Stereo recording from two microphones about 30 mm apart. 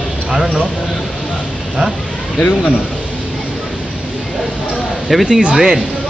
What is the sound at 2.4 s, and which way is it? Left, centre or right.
Speech, left.